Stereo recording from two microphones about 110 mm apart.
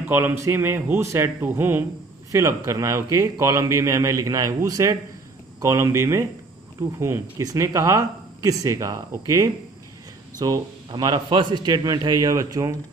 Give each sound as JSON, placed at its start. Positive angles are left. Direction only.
{"t": 0.1, "sound": "a man's voice", "side_deg": -25}